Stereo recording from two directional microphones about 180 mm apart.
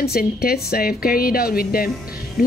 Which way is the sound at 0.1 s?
55° left (ahead or behind).